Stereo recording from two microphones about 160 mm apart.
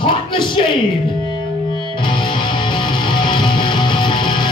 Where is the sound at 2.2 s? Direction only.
35° left (ahead or behind).